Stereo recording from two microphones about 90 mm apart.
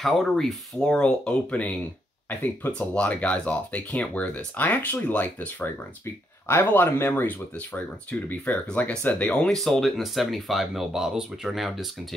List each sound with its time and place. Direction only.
0.0 s speech: 5° left (ahead or behind)
9.6 s speech: centre (ahead or behind)